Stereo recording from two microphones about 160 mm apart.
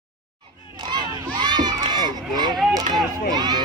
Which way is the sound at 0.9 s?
25° right (ahead or behind).